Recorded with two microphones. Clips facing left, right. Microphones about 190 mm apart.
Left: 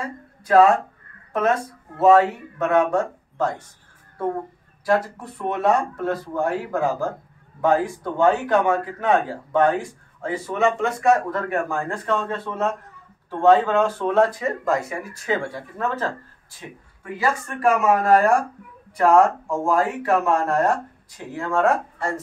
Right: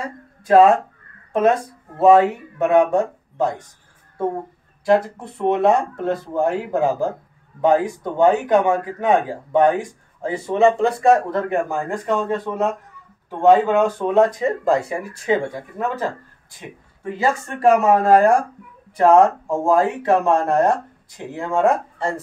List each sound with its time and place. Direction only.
0.5 s speech: 20° right (ahead or behind)
2.0 s speech: 20° right (ahead or behind)
4.8 s speech: 25° right (ahead or behind)